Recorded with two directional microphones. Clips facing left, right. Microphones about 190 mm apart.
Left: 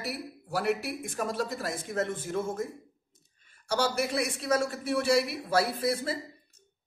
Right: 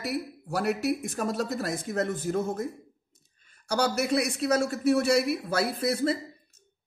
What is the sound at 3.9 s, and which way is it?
Speech, 40° right (ahead or behind).